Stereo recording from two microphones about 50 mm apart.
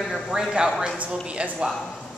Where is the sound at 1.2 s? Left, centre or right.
Right.